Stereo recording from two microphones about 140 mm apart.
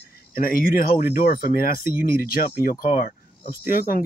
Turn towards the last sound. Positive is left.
turn(degrees=90)